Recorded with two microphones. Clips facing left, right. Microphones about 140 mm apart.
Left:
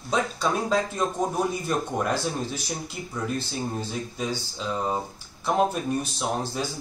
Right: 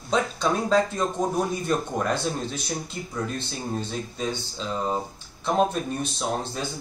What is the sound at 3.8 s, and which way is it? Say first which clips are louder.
Speech: right 1 dB; 5° left (ahead or behind).